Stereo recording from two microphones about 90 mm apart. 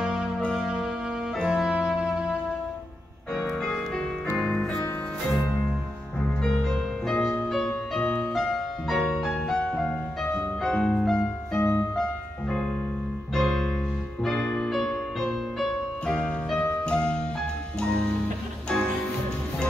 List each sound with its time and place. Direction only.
0.0 s music: 5° right (ahead or behind)
3.3 s music: centre (ahead or behind)
6.2 s music: 5° left (ahead or behind)
11.5 s music: 25° left (ahead or behind)
13.3 s piano: 5° left (ahead or behind)
14.2 s music: 5° left (ahead or behind)